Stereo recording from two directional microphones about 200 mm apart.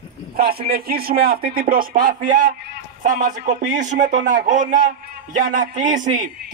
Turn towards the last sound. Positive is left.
turn(degrees=-40)  # may be behind; listen again after turning